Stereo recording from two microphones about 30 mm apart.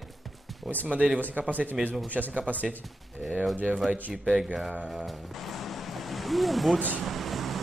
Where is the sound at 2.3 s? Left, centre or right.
Right.